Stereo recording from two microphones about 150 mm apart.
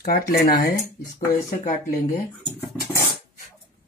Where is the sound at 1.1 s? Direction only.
20° left (ahead or behind).